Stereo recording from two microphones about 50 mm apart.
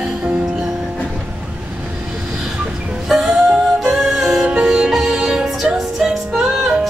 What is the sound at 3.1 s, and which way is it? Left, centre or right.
Music, centre.